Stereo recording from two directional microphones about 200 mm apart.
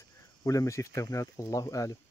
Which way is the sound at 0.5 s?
15° left (ahead or behind).